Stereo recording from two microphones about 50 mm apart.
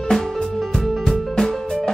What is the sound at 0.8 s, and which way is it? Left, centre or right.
Music, centre.